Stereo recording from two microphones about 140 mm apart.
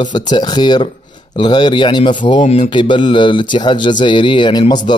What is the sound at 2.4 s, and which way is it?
Mantra, 50° left (ahead or behind).